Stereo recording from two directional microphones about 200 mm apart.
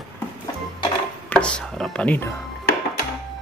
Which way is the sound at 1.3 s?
5° left (ahead or behind).